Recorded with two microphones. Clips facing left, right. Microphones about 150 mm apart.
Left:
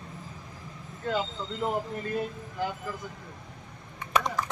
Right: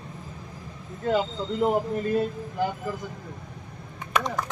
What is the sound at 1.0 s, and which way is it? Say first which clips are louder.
Speech: right 6 dB; 25° right (ahead or behind).